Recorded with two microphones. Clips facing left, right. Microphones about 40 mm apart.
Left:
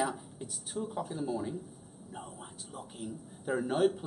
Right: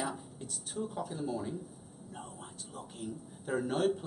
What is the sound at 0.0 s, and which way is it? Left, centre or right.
Speech, centre.